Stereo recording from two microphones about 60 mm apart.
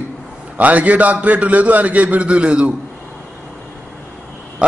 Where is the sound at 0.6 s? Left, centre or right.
Right.